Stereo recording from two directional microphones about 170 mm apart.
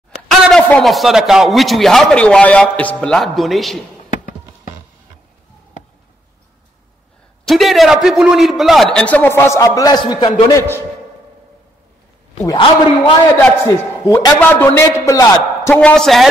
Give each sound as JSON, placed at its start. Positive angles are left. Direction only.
{"t": 0.1, "sound": "speech", "side_deg": 0}
{"t": 7.4, "sound": "speech", "side_deg": 0}
{"t": 12.4, "sound": "a man's voice", "side_deg": 30}
{"t": 15.8, "sound": "speech", "side_deg": 5}